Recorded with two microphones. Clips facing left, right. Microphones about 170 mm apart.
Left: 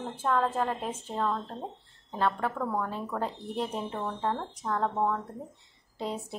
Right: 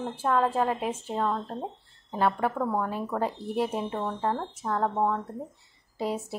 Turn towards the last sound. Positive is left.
turn(degrees=-5)  # may be behind; listen again after turning